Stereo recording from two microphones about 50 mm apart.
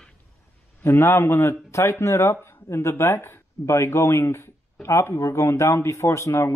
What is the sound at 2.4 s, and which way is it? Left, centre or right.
Chopping, left.